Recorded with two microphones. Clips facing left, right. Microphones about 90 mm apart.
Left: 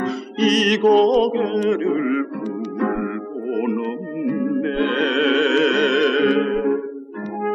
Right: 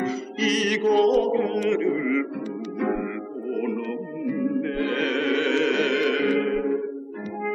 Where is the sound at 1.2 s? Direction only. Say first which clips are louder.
Left 4 dB; 60° left (ahead or behind).